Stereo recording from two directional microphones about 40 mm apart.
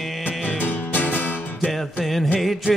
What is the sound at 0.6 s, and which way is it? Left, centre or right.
Music, left.